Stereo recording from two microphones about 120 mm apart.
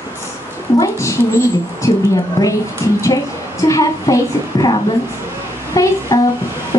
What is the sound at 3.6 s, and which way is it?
A woman's voice, 25° left (ahead or behind).